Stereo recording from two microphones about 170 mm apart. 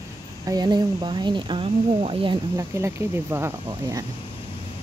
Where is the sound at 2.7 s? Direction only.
15° right (ahead or behind).